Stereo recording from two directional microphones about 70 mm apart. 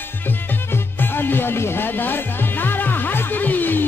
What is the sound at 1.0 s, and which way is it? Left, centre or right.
Music, left.